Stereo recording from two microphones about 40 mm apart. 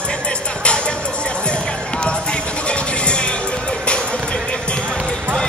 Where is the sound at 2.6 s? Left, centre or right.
Left.